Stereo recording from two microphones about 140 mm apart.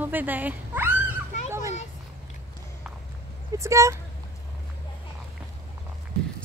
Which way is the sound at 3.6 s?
20° right (ahead or behind).